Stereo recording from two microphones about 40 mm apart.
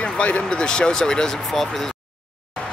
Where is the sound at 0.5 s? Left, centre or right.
Centre.